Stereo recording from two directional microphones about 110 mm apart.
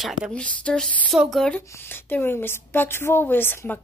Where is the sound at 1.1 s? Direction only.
Centre (ahead or behind).